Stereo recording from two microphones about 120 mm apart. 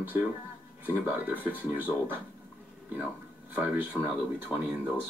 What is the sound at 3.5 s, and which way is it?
Speech, 10° right (ahead or behind).